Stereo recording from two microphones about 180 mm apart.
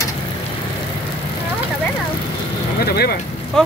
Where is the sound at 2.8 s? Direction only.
60° left (ahead or behind).